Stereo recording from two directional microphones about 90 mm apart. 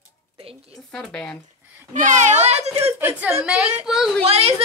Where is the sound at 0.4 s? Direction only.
90° right.